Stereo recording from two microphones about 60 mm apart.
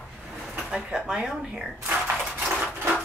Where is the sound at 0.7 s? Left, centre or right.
Centre.